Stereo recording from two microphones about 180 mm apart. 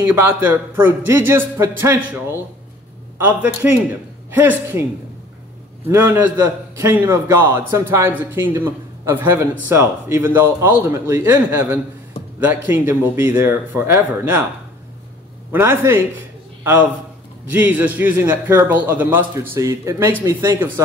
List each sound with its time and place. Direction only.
0.0 s a man's voice: 10° right (ahead or behind)
3.6 s a man's voice: 10° right (ahead or behind)
5.9 s a man's voice: 10° right (ahead or behind)
15.5 s a man's voice: 15° right (ahead or behind)
17.5 s a man's voice: 10° right (ahead or behind)